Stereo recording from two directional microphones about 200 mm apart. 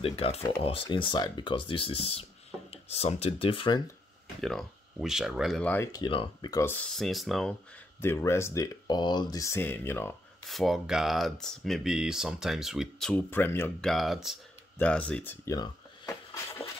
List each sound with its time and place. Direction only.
0.0 s speech: 30° left (ahead or behind)
4.4 s speech: centre (ahead or behind)
8.0 s speech: 10° left (ahead or behind)
10.5 s speech: centre (ahead or behind); by 16.6 s 15° left (ahead or behind)